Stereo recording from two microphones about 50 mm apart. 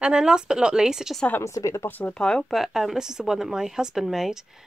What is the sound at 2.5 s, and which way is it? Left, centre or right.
A woman's voice, centre.